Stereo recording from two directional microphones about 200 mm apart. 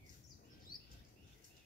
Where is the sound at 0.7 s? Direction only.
45° left (ahead or behind).